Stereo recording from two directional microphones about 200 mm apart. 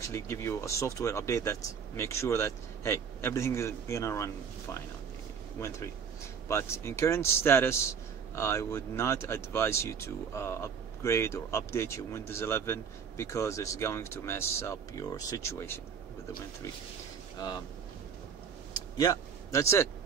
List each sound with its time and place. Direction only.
0.1 s a man's voice: 15° left (ahead or behind)
5.6 s a man's voice: 15° left (ahead or behind)
18.7 s a sound: 15° left (ahead or behind)